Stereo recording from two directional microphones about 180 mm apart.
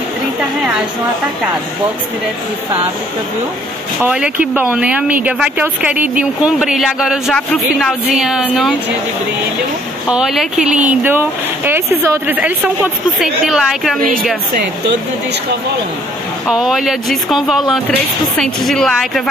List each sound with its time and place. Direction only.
4.0 s speech: 5° right (ahead or behind)
10.0 s speech: 5° right (ahead or behind)
14.5 s speech: 60° right (ahead or behind)
16.4 s speech: centre (ahead or behind)